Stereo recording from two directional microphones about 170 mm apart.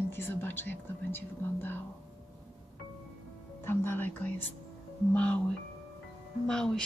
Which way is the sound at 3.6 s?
15° left (ahead or behind).